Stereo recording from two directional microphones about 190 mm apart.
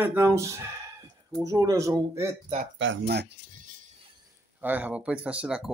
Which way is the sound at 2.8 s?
70° right (ahead or behind).